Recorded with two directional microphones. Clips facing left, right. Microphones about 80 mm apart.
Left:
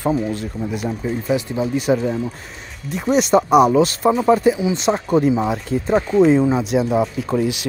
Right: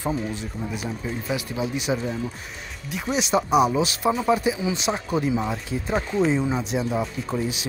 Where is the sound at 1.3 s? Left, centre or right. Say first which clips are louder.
Left 7 dB; left.